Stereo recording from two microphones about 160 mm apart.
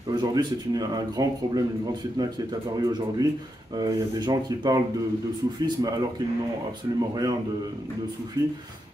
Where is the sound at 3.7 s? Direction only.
25° right (ahead or behind).